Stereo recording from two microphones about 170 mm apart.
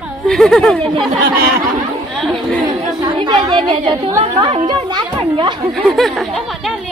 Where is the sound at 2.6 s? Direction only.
25° right (ahead or behind).